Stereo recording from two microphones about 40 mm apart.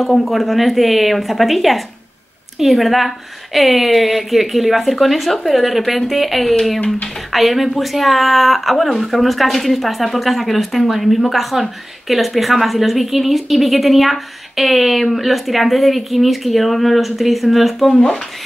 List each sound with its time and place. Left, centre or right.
0.2 s speech: centre
17.9 s speech: left